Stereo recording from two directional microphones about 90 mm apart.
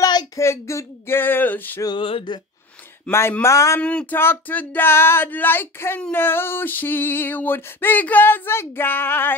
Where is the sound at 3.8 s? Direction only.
15° left (ahead or behind).